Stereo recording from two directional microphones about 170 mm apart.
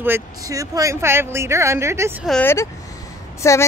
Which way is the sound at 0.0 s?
15° right (ahead or behind).